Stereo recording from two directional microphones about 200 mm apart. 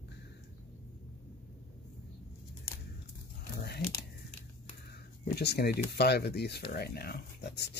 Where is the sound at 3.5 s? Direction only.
55° left (ahead or behind).